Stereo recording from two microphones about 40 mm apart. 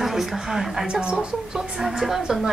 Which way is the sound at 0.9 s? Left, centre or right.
Right.